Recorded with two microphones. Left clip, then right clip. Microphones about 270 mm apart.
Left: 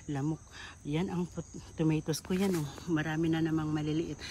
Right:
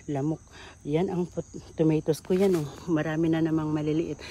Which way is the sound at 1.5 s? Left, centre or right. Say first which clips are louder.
Right 7 dB; centre.